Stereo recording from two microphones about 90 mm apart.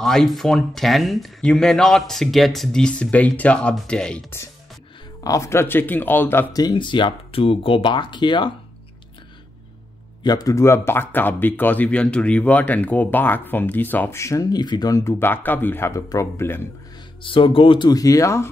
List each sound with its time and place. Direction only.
0.0 s speech: 5° left (ahead or behind)
5.2 s speech: 35° left (ahead or behind)
6.5 s speech: 50° left (ahead or behind)
10.2 s a man's voice: 45° left (ahead or behind)
10.6 s speech: 30° left (ahead or behind); by 15.0 s 50° left (ahead or behind)
15.0 s speech: 25° left (ahead or behind)
16.1 s speech: 35° left (ahead or behind)
17.2 s speech: 75° left (ahead or behind)
17.9 s speech: 40° left (ahead or behind)